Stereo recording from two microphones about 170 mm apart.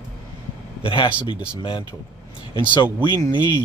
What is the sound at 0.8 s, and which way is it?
Speech, 30° left (ahead or behind).